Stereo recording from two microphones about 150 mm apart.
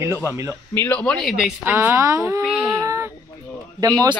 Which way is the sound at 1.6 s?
15° right (ahead or behind).